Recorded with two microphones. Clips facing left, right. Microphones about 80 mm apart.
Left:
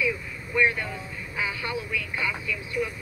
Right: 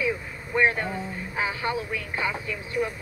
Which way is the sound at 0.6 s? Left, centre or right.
Right.